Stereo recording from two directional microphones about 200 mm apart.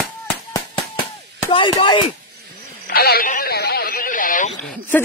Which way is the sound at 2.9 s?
50° left (ahead or behind).